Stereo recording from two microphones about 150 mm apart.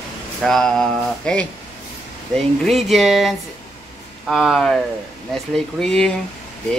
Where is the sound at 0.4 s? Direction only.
5° left (ahead or behind).